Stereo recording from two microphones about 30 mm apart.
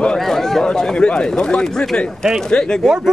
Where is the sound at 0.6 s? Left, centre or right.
Left.